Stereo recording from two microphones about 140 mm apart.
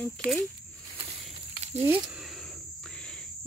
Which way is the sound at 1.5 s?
50° right (ahead or behind).